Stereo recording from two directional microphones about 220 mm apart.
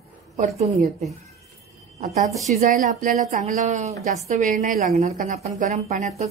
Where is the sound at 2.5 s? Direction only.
35° right (ahead or behind).